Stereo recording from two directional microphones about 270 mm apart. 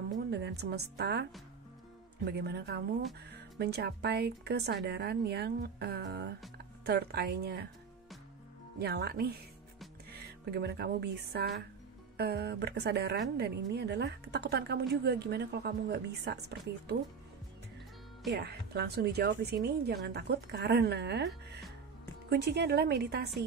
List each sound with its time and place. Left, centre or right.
0.3 s a woman's voice: right
2.2 s a woman's voice: right
8.7 s a woman's voice: right
10.1 s music: right
12.2 s a woman's voice: right
18.3 s a woman's voice: right